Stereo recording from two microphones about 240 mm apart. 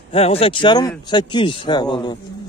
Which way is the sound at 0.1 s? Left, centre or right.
Left.